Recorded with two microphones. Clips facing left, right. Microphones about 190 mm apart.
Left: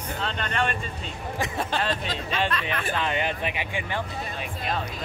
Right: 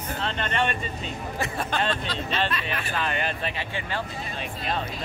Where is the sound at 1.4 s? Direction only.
25° left (ahead or behind).